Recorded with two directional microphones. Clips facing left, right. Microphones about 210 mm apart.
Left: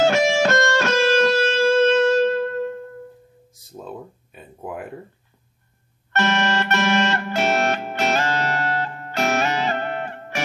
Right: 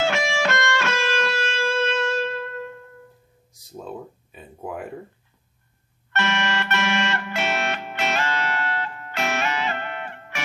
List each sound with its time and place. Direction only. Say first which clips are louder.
0.0 s music: left 6 dB; 40° left (ahead or behind)
3.7 s a sound: even; centre (ahead or behind)
6.1 s music: left 4 dB; 40° left (ahead or behind)